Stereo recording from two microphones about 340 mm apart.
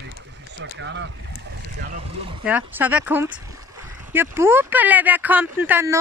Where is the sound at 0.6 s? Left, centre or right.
Right.